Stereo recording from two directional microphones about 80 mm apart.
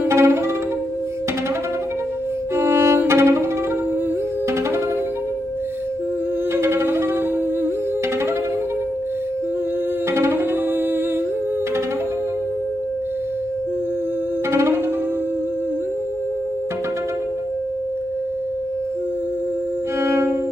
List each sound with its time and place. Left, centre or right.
0.0 s music: right
2.5 s music: right
6.5 s music: right
10.1 s tabla: right
20.0 s violin: right